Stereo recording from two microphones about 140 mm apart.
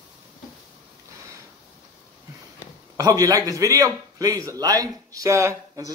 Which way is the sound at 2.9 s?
25° right (ahead or behind).